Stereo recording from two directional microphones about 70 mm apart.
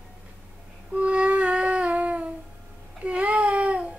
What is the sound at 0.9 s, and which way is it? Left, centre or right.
Music, centre.